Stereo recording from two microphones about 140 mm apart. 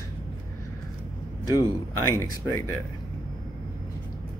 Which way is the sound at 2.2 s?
30° left (ahead or behind).